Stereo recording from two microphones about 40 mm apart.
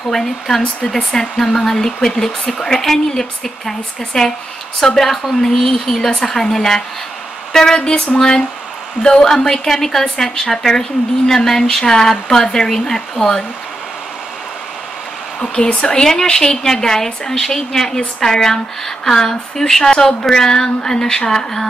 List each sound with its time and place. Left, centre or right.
0.1 s a woman's voice: centre
15.4 s speech: left
16.0 s a woman's voice: centre